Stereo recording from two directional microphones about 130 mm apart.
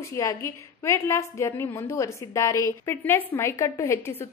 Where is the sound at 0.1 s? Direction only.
25° left (ahead or behind).